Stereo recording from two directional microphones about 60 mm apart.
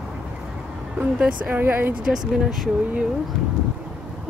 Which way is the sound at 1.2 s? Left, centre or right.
Centre.